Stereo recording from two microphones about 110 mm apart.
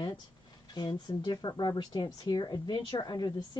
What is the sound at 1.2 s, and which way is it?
A woman's voice, 40° left (ahead or behind).